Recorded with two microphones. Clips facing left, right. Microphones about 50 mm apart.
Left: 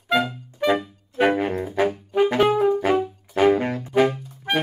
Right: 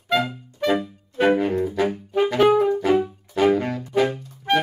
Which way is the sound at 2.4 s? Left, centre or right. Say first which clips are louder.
Right 1 dB; centre.